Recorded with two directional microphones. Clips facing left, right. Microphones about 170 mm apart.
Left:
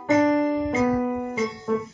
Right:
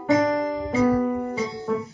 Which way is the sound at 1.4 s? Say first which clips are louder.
Left 1 dB; 35° right (ahead or behind).